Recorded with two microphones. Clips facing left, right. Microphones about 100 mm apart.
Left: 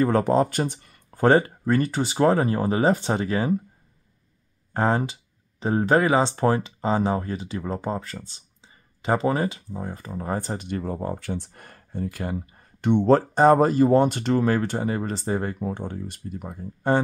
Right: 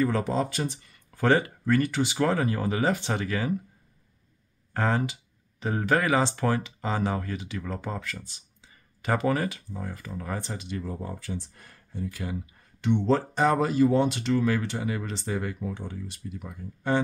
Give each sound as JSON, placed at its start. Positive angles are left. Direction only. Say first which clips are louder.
{"t": 0.0, "sound": "speech", "louder": "left 6 dB", "side_deg": 50}
{"t": 1.2, "sound": "speech", "louder": "left 5 dB", "side_deg": 35}
{"t": 4.7, "sound": "speech", "louder": "left 4 dB", "side_deg": 30}
{"t": 10.4, "sound": "speech", "louder": "left 5 dB", "side_deg": 50}